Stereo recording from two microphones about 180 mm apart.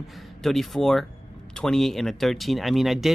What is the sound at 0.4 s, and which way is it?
Speech, centre (ahead or behind).